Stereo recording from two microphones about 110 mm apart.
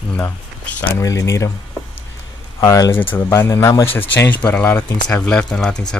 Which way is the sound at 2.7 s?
25° left (ahead or behind).